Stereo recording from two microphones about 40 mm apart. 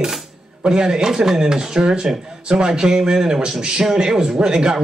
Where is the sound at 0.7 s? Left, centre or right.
Centre.